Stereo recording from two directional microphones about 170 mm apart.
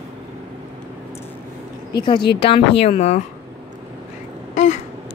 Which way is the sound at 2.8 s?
40° left (ahead or behind).